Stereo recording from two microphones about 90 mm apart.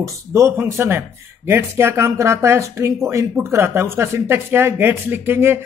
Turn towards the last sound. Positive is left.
turn(degrees=-25)  # may be behind; listen again after turning